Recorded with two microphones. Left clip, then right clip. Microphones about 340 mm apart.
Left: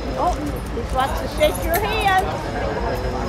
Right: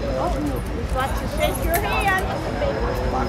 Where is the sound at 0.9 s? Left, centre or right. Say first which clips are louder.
Left 4 dB; left.